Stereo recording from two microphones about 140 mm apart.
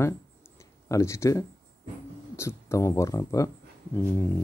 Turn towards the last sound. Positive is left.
turn(degrees=20)  # may be behind; listen again after turning